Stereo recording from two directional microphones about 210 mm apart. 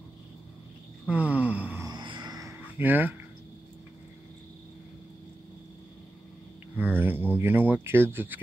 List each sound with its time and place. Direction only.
1.0 s gasp: 5° right (ahead or behind)
1.9 s a sound: 20° right (ahead or behind)
6.8 s speech: 10° right (ahead or behind)